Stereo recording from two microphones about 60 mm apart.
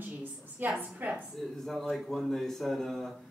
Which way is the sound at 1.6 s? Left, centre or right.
Centre.